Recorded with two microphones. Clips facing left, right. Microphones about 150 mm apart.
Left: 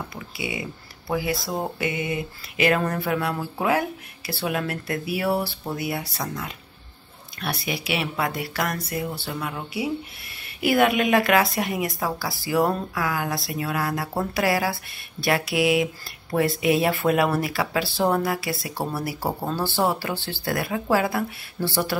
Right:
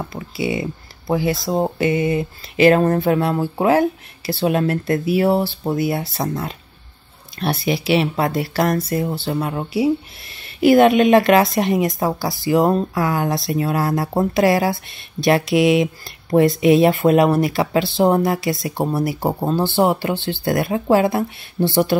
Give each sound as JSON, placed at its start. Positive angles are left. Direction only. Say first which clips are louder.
{"t": 1.1, "sound": "speech", "louder": "right 7 dB", "side_deg": -25}